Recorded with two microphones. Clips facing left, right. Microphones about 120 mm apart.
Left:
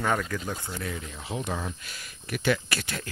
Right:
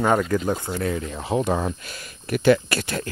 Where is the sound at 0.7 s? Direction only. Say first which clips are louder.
Right 9 dB; 55° right (ahead or behind).